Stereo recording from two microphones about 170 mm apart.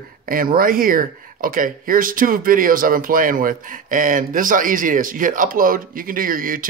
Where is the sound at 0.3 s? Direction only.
55° right (ahead or behind).